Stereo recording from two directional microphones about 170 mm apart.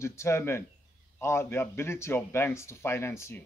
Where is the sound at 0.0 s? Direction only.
15° left (ahead or behind).